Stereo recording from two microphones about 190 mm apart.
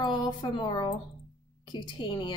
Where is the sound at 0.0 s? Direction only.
25° left (ahead or behind).